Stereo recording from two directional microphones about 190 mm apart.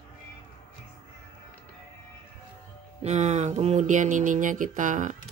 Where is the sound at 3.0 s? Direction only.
35° right (ahead or behind).